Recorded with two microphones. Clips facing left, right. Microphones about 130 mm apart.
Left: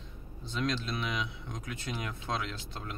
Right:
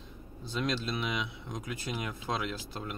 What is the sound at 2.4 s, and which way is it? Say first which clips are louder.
Speech: right 4 dB; 10° right (ahead or behind).